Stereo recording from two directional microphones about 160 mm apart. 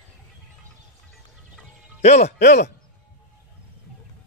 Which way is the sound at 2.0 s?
45° left (ahead or behind).